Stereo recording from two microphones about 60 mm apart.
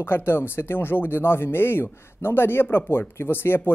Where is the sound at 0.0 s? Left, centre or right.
Left.